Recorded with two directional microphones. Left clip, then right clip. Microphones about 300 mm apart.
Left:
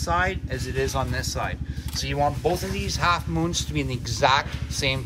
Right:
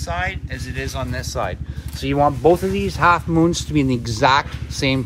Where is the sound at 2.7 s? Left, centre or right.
Centre.